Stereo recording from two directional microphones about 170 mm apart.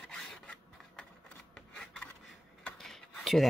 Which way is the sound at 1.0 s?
5° left (ahead or behind).